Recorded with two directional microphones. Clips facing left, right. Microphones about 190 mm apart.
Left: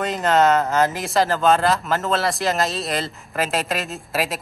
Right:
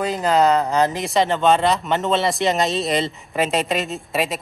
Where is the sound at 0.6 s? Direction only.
15° right (ahead or behind).